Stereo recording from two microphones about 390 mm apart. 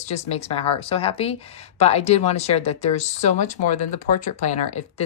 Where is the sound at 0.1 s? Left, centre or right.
Centre.